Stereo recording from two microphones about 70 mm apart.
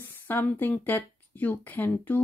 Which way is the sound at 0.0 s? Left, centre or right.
Left.